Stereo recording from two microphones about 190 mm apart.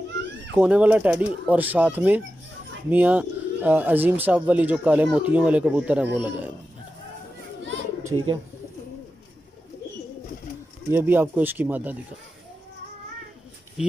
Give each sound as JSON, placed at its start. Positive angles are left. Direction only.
{"t": 0.6, "sound": "speech", "side_deg": -5}
{"t": 8.1, "sound": "speech", "side_deg": -25}
{"t": 10.9, "sound": "speech", "side_deg": -10}